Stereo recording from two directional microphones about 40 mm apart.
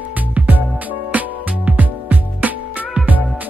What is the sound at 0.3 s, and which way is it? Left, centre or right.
Music, right.